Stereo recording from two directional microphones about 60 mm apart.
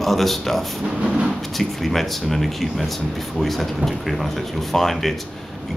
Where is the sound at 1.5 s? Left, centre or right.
Centre.